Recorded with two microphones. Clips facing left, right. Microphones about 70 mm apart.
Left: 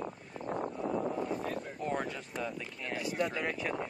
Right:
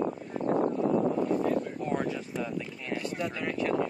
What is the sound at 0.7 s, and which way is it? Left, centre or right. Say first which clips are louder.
Speech: right 7 dB; centre.